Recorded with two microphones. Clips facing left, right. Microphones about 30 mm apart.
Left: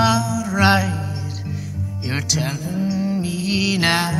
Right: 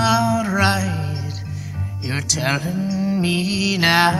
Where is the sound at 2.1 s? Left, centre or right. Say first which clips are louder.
Left 1 dB; centre.